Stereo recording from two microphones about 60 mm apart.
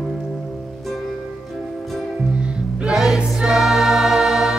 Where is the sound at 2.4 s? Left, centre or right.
Centre.